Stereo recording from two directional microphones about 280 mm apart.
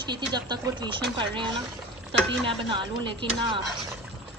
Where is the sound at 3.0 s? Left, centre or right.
Centre.